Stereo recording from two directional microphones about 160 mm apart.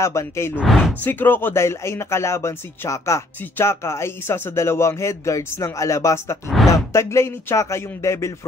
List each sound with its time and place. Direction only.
0.0 s speech: 20° left (ahead or behind)
0.6 s speech: centre (ahead or behind)
1.0 s speech: 10° left (ahead or behind)